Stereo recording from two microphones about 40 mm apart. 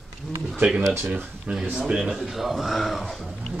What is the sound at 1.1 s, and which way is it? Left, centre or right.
Speech, right.